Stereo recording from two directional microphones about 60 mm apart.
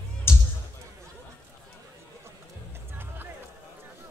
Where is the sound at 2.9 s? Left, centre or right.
Right.